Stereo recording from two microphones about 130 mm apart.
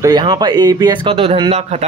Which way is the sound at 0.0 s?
30° right (ahead or behind).